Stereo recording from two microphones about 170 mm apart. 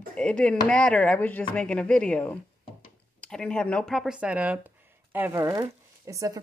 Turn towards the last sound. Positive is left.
turn(degrees=-20)  # may be behind; listen again after turning